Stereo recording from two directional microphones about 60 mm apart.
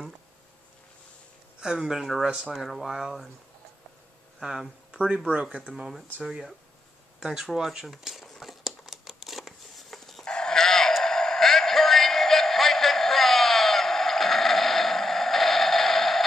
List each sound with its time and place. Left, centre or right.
1.6 s speech: centre
2.5 s speech: centre
4.4 s speech: centre
5.7 s speech: centre
7.5 s crumpling: centre
10.2 s dog: centre
10.9 s synthetic singing: centre